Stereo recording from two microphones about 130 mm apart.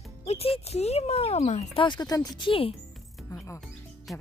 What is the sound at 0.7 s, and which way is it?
Speech, 55° left (ahead or behind).